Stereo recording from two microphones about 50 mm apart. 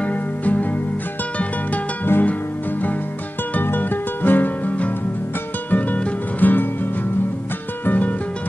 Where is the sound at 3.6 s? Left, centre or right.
Left.